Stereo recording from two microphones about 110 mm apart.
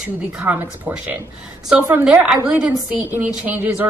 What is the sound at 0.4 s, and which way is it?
A woman's voice, 15° right (ahead or behind).